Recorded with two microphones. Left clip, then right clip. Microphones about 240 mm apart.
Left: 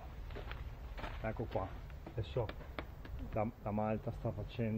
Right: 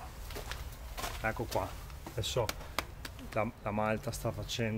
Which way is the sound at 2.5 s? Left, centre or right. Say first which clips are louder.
Right 9 dB; right.